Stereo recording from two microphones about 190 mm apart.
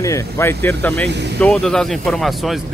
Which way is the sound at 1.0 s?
65° right (ahead or behind).